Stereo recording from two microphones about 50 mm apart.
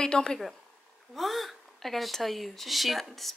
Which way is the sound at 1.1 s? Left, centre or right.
Centre.